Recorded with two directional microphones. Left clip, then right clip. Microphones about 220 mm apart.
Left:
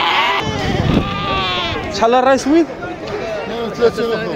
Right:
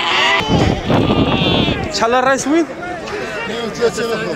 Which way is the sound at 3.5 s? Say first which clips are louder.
Left 2 dB; 25° left (ahead or behind).